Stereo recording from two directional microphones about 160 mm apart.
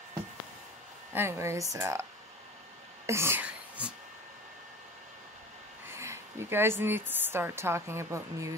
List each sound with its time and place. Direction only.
1.1 s speech: 15° right (ahead or behind)
3.1 s a sound: 15° right (ahead or behind)
5.9 s a woman's voice: 15° right (ahead or behind)